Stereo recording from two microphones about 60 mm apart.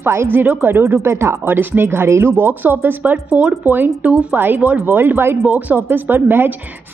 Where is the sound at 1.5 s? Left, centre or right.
Right.